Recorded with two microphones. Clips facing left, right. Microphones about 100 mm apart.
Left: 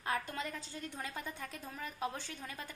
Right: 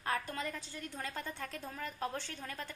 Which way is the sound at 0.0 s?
20° left (ahead or behind).